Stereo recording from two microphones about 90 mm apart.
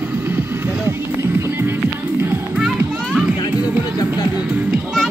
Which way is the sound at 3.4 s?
50° left (ahead or behind).